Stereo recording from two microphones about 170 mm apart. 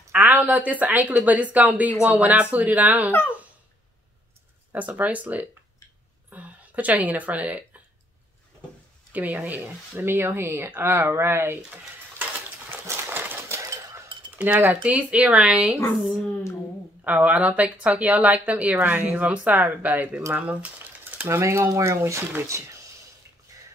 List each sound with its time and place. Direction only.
0.1 s speech: 10° right (ahead or behind)
4.7 s speech: 10° right (ahead or behind)
9.1 s speech: 10° right (ahead or behind)
12.7 s a sound: 15° right (ahead or behind)
14.4 s speech: 10° right (ahead or behind)
17.0 s speech: 10° right (ahead or behind)